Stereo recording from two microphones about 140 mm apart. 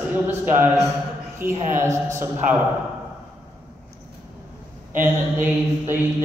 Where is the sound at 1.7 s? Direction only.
20° right (ahead or behind).